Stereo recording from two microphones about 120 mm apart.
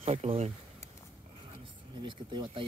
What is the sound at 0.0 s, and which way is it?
Speech, 60° right (ahead or behind).